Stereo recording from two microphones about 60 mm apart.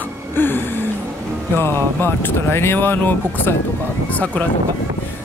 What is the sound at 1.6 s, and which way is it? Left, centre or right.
Speech, left.